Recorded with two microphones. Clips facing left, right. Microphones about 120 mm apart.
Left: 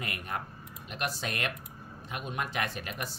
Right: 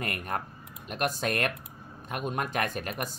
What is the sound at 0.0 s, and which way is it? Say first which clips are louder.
Speech: right 4 dB; 50° right (ahead or behind).